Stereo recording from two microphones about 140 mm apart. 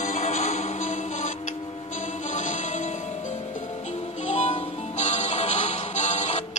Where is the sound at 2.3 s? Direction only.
65° left (ahead or behind).